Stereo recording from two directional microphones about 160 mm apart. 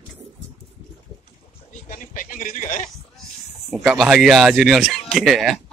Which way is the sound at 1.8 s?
60° left (ahead or behind).